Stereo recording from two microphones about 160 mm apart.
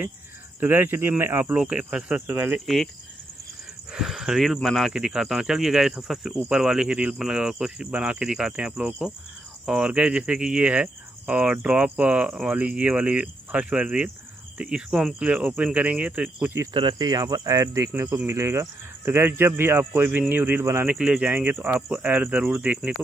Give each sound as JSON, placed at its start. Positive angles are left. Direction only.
{"t": 0.6, "sound": "speech", "side_deg": -15}
{"t": 2.6, "sound": "speech", "side_deg": 0}
{"t": 3.9, "sound": "speech", "side_deg": -5}
{"t": 16.7, "sound": "speech", "side_deg": -30}